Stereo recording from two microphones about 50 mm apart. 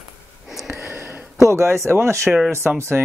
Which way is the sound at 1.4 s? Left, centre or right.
Right.